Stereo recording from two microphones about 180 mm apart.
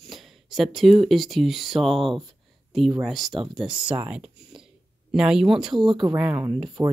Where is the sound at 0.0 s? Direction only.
Centre (ahead or behind).